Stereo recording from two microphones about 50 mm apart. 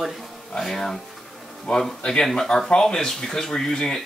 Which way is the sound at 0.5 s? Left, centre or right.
Centre.